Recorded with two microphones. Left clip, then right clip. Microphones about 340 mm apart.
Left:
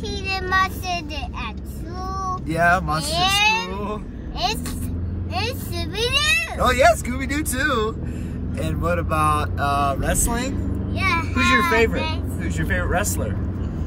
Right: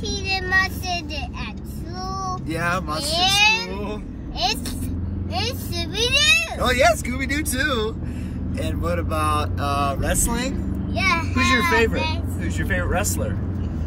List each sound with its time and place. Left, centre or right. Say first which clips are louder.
0.1 s child singing: right 1 dB; centre
2.4 s speech: left 8 dB; centre
3.0 s a child's voice: right 1 dB; centre
5.3 s a child's voice: even; centre